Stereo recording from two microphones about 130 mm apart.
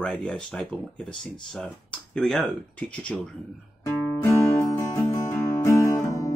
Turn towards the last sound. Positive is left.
turn(degrees=25)  # may be behind; listen again after turning